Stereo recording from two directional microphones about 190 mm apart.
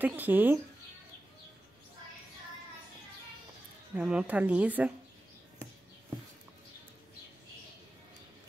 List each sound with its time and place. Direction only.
0.0 s speech: 10° right (ahead or behind)
3.9 s speech: 5° right (ahead or behind)